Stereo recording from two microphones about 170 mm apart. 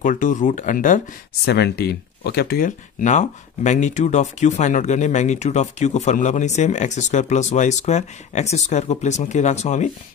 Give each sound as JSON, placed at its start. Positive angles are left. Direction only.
{"t": 0.0, "sound": "speech", "side_deg": 50}
{"t": 1.4, "sound": "speech", "side_deg": 70}
{"t": 3.0, "sound": "speech", "side_deg": 45}